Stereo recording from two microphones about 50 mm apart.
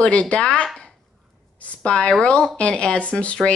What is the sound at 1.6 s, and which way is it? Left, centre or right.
Speech, left.